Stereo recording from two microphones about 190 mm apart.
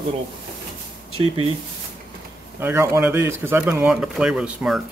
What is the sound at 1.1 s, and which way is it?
Speech, 25° right (ahead or behind).